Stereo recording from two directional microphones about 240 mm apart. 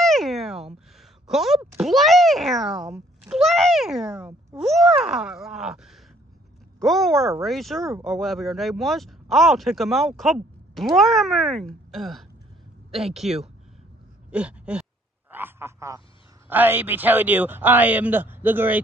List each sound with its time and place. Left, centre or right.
0.0 s cat: centre
1.2 s speech: centre
14.3 s a sound: centre
15.3 s a man's voice: centre